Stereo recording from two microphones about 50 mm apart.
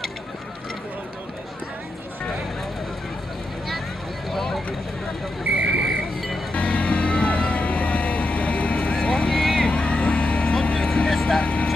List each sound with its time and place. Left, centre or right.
4.3 s vehicle: centre
5.8 s vehicle: centre
6.5 s vehicle: left
9.3 s vehicle: centre
9.6 s vehicle: left